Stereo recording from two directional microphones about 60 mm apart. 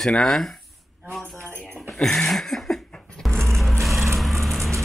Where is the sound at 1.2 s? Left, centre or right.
Right.